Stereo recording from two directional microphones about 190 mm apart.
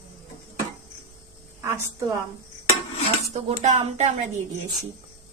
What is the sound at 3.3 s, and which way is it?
Speech, 35° right (ahead or behind).